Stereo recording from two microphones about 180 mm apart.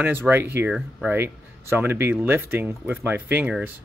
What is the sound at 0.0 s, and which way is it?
Speech, 10° right (ahead or behind).